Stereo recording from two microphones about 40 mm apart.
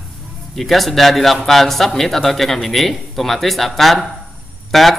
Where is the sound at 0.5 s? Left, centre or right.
Centre.